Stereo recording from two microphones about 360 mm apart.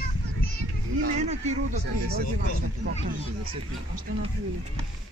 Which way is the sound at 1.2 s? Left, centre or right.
Centre.